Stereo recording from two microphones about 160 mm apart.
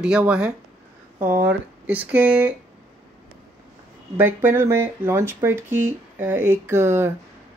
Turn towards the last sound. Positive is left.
turn(degrees=-15)  # may be behind; listen again after turning